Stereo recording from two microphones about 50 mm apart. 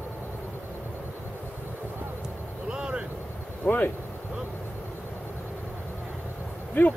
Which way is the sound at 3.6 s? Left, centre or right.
Left.